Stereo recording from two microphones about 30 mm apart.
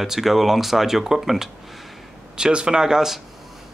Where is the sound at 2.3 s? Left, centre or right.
Right.